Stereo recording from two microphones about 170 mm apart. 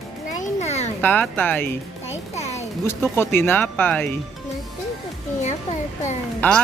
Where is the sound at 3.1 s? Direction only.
15° left (ahead or behind).